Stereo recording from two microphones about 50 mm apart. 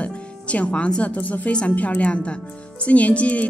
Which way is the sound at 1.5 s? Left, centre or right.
Left.